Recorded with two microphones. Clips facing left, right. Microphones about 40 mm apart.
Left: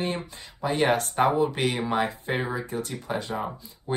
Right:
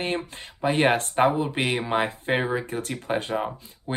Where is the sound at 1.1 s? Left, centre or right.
Right.